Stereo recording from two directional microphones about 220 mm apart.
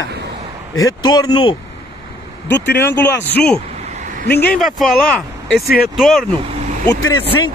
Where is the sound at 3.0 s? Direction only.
10° left (ahead or behind).